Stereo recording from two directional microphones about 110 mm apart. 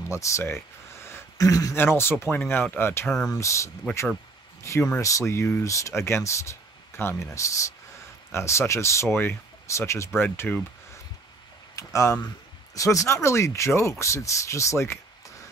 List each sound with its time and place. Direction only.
0.1 s speech: 25° left (ahead or behind)
11.7 s speech: 30° left (ahead or behind)